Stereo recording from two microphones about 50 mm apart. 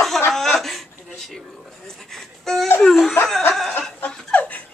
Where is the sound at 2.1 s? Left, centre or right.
Centre.